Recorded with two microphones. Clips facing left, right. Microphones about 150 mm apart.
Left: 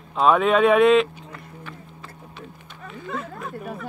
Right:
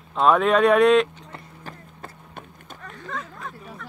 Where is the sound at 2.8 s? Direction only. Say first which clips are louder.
Left 3 dB; 5° left (ahead or behind).